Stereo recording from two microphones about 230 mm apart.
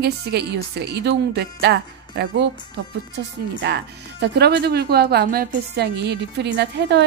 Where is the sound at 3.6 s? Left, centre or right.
Right.